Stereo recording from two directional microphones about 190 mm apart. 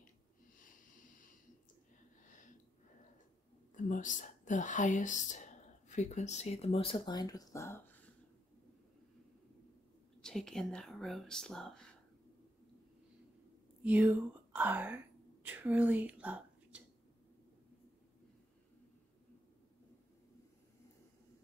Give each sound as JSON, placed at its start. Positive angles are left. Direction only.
{"t": 2.2, "sound": "a sound", "side_deg": 40}
{"t": 3.7, "sound": "speech", "side_deg": 40}
{"t": 10.2, "sound": "speech", "side_deg": 0}
{"t": 13.8, "sound": "speech", "side_deg": -10}